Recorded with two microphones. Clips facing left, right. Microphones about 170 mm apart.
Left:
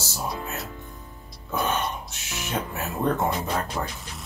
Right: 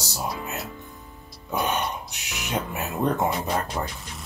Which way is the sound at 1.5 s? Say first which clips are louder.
Even; 20° right (ahead or behind).